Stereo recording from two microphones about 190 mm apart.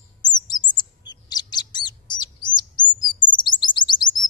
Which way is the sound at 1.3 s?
20° left (ahead or behind).